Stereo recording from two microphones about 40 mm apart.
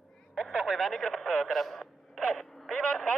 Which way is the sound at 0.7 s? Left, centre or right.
Centre.